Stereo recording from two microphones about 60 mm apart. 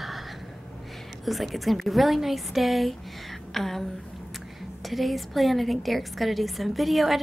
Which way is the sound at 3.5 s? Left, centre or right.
Centre.